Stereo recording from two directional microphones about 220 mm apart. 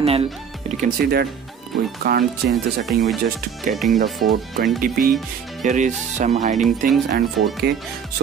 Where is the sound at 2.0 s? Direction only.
45° right (ahead or behind).